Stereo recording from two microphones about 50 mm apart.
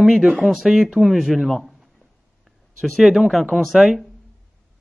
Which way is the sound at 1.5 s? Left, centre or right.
Centre.